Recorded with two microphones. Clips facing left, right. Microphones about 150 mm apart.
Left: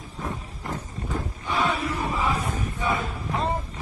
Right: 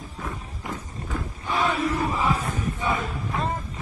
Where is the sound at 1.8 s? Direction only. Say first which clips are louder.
Right 3 dB; 35° right (ahead or behind).